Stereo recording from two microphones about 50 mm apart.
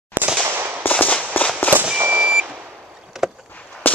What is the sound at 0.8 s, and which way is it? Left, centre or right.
Firecracker, left.